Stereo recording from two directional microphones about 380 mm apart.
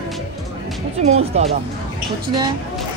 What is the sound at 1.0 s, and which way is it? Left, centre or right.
Speech, centre.